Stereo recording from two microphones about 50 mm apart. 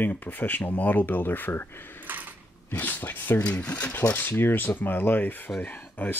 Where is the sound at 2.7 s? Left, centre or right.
Left.